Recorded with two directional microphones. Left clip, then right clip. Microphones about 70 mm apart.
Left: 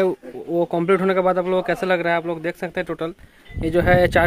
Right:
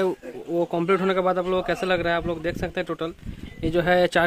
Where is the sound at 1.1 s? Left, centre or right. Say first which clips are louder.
Left 4 dB; left.